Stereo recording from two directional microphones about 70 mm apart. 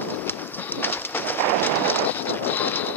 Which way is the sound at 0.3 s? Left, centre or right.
Left.